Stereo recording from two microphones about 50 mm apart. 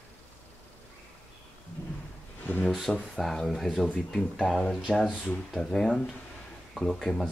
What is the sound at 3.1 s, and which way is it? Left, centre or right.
Speech, centre.